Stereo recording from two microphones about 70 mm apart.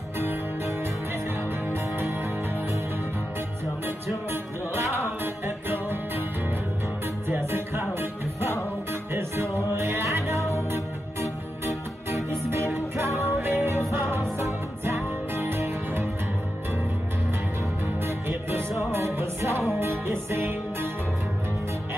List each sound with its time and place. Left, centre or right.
5.2 s music: right
7.2 s music: right
9.7 s music: right
12.4 s music: right
18.0 s music: right